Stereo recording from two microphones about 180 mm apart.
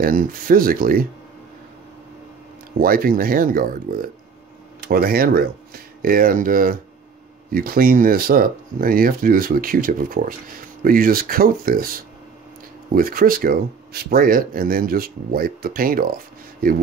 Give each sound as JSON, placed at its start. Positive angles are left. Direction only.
{"t": 0.0, "sound": "speech", "side_deg": -50}
{"t": 2.8, "sound": "speech", "side_deg": -55}